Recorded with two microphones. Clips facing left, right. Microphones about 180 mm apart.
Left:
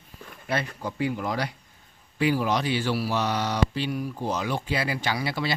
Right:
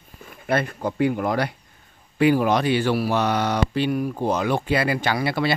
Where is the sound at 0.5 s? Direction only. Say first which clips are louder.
Right 6 dB; 55° right (ahead or behind).